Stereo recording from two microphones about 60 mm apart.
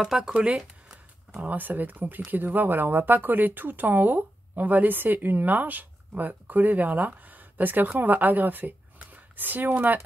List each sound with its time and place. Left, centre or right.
0.0 s speech: centre
1.3 s speech: right